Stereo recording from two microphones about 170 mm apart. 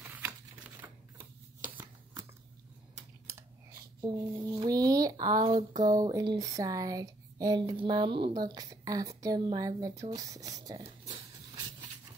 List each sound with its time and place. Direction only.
0.0 s a sound: 10° right (ahead or behind)
3.3 s typing: 15° right (ahead or behind)
4.1 s speech: 25° right (ahead or behind)